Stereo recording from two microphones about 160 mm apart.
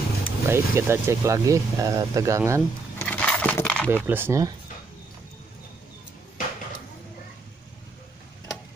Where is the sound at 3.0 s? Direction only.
5° left (ahead or behind).